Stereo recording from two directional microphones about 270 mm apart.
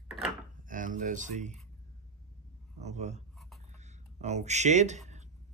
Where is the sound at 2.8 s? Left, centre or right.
Right.